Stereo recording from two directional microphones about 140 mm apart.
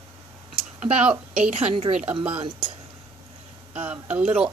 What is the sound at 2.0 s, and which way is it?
Speech, 10° right (ahead or behind).